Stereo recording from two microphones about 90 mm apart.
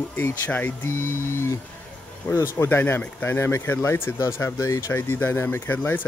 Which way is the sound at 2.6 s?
25° left (ahead or behind).